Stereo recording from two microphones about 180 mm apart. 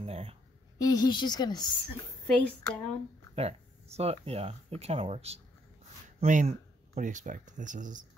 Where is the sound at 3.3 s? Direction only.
35° right (ahead or behind).